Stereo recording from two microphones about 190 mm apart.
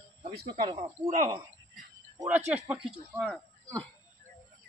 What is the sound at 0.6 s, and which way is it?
Speech, 30° right (ahead or behind).